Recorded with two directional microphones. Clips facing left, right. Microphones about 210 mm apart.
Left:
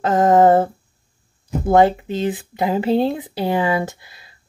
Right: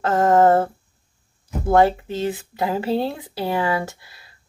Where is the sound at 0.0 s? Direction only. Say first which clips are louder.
Left 2 dB; 15° left (ahead or behind).